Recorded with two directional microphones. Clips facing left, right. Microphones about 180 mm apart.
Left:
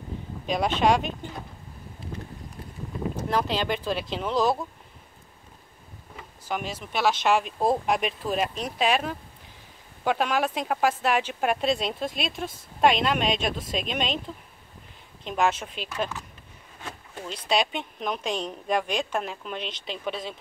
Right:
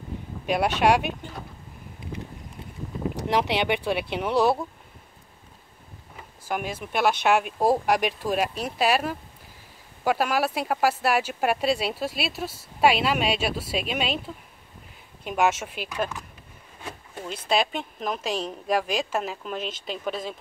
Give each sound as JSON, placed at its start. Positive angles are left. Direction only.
{"t": 0.5, "sound": "speech", "side_deg": -10}
{"t": 3.2, "sound": "speech", "side_deg": -75}
{"t": 4.2, "sound": "speech", "side_deg": -10}
{"t": 6.4, "sound": "speech", "side_deg": -10}
{"t": 17.2, "sound": "a woman's voice", "side_deg": -5}